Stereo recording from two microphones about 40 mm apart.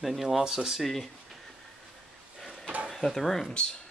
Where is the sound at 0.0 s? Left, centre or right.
Centre.